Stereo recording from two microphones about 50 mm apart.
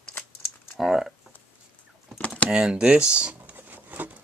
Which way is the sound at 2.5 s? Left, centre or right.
Centre.